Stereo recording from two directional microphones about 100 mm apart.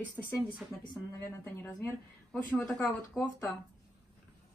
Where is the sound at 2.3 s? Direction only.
10° left (ahead or behind).